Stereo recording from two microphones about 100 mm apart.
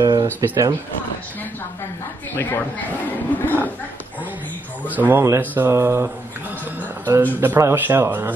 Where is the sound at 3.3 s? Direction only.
20° left (ahead or behind).